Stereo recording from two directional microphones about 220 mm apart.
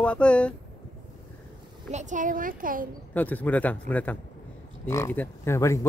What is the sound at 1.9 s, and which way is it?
A woman's voice, 35° right (ahead or behind).